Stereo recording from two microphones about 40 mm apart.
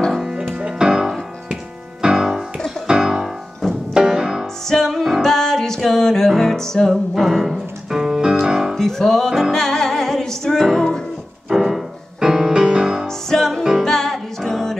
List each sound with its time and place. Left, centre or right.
0.3 s music: centre
1.5 s piano: centre
3.9 s music: centre
4.6 s music: centre
6.9 s music: centre
8.7 s music: centre
11.4 s keyboard: centre
12.2 s music: centre
13.0 s music: centre